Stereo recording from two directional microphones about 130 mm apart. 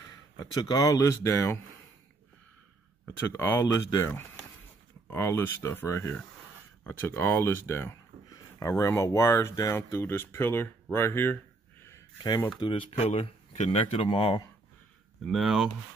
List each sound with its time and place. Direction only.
0.4 s speech: 30° left (ahead or behind)
3.1 s speech: 15° left (ahead or behind)
5.1 s speech: 20° left (ahead or behind)
12.5 s speech: 40° left (ahead or behind)
15.2 s speech: centre (ahead or behind)